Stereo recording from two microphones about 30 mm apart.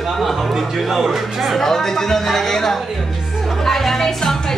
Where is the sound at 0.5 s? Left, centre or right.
Centre.